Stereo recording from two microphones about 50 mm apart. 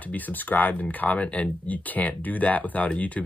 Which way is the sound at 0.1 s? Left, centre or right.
Left.